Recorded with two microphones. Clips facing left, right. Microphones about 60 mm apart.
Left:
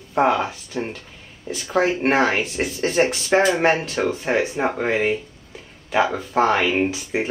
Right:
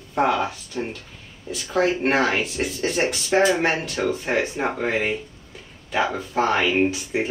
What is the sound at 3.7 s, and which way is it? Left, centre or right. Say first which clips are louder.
Speech: left 3 dB; left.